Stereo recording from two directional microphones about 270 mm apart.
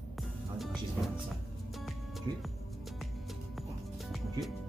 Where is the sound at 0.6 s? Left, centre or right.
Centre.